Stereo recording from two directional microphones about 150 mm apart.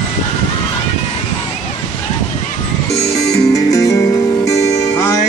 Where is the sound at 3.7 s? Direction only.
20° left (ahead or behind).